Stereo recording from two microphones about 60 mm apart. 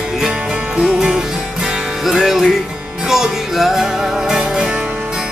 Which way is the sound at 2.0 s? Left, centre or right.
Centre.